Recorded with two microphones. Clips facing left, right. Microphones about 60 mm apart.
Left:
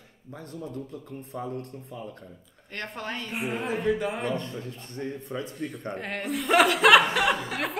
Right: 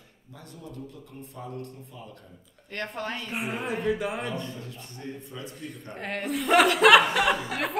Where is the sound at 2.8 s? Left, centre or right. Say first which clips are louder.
Right 1 dB; centre.